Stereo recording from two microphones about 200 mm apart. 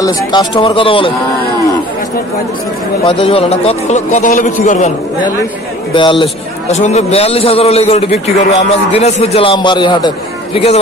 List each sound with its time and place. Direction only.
0.0 s speech: 20° left (ahead or behind)
3.1 s a man's voice: 25° left (ahead or behind)
5.9 s a man's voice: 25° left (ahead or behind)